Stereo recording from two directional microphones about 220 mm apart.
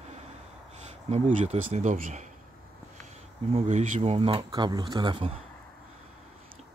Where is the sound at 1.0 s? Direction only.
30° right (ahead or behind).